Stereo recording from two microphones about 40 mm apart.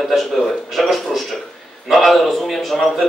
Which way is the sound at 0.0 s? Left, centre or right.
Centre.